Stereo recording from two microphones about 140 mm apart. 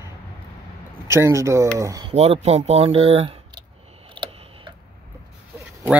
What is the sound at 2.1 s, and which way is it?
Speech, 45° right (ahead or behind).